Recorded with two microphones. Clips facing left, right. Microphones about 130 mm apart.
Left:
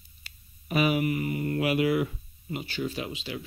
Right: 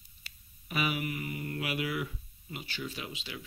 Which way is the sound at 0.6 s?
35° left (ahead or behind).